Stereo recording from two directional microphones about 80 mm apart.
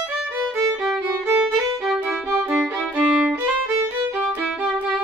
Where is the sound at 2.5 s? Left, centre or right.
Centre.